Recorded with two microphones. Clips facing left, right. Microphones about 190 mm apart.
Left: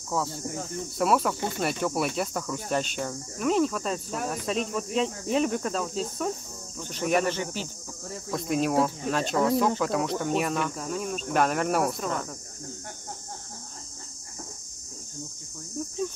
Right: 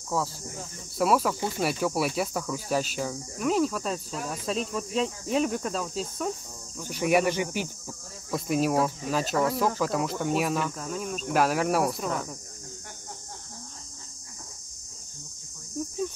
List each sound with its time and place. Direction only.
0.1 s cricket: centre (ahead or behind)
6.8 s speech: 10° right (ahead or behind)
8.3 s cricket: 5° right (ahead or behind)